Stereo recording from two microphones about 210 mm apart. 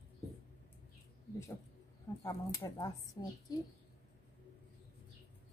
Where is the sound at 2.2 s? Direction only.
15° left (ahead or behind).